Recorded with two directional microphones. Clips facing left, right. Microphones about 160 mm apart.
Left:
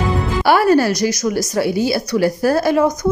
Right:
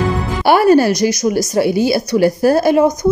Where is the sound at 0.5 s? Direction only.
20° right (ahead or behind).